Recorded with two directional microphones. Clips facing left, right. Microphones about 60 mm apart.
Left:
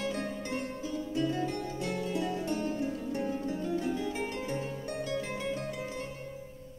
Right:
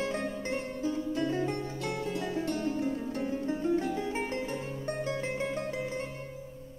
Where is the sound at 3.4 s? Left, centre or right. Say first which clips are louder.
Right 3 dB; right.